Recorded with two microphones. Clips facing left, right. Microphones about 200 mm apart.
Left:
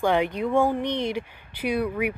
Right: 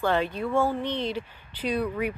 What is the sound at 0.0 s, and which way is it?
Speech, 15° left (ahead or behind).